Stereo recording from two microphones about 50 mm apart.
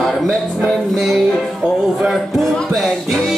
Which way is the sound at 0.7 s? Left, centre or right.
Centre.